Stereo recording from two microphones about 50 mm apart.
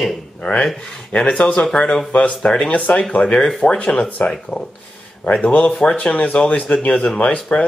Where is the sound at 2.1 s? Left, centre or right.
Left.